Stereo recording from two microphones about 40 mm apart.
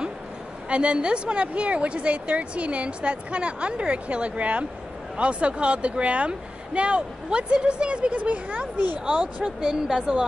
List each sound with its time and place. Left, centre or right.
0.7 s speech: right
9.0 s speech: right
9.6 s speech: centre